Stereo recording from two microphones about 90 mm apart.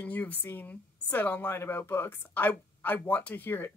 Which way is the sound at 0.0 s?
20° left (ahead or behind).